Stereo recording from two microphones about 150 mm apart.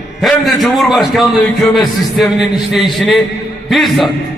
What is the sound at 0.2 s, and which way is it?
A man's voice, centre (ahead or behind).